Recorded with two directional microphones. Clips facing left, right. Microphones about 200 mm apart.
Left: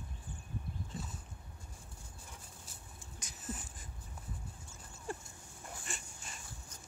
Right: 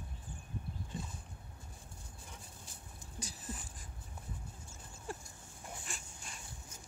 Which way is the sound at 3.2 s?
35° right (ahead or behind).